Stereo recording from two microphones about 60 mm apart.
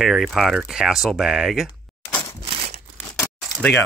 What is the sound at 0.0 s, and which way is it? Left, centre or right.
Speech, centre.